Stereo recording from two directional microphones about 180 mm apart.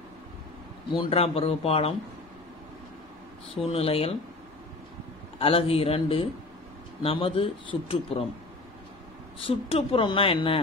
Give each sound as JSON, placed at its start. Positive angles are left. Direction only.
{"t": 0.8, "sound": "speech", "side_deg": 30}
{"t": 3.6, "sound": "speech", "side_deg": 30}
{"t": 5.4, "sound": "speech", "side_deg": 30}
{"t": 9.4, "sound": "speech", "side_deg": 30}